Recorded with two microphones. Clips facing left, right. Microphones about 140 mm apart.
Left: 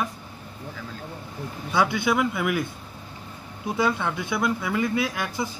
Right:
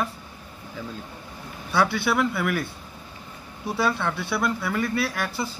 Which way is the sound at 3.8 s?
15° left (ahead or behind).